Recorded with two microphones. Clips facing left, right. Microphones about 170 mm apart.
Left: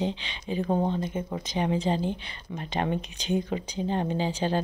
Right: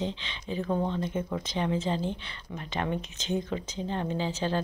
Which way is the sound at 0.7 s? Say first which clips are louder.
Left 3 dB; 35° left (ahead or behind).